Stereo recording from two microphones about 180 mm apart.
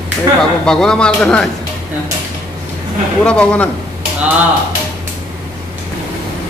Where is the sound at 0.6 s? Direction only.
5° left (ahead or behind).